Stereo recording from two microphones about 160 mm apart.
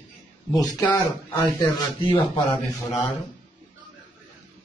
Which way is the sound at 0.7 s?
20° left (ahead or behind).